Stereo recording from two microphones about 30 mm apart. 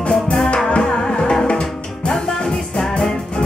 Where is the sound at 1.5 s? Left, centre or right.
Left.